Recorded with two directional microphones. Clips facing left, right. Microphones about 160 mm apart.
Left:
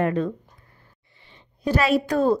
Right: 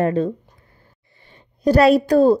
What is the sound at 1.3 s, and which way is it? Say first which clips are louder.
A woman's voice: right 8 dB; 40° right (ahead or behind).